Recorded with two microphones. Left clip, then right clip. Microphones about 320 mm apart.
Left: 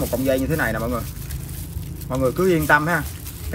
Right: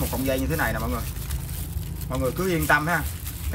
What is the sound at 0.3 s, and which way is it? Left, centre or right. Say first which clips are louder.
Speech: left 3 dB; centre.